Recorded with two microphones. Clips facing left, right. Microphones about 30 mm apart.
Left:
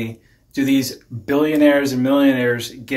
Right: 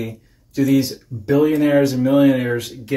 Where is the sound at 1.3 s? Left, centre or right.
Left.